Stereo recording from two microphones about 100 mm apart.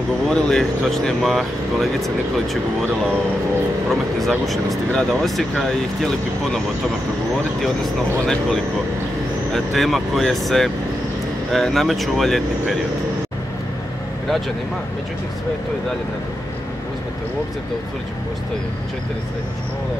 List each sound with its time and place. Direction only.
0.3 s speech: 5° left (ahead or behind)
3.9 s speech: centre (ahead or behind)
7.6 s speech: centre (ahead or behind)